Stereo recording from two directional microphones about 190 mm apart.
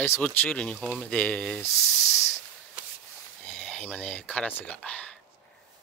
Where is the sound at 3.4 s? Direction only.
5° left (ahead or behind).